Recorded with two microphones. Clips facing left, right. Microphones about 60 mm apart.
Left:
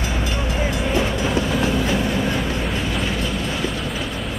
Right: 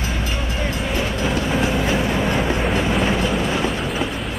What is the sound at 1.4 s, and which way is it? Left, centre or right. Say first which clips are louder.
Music: right 1 dB; centre.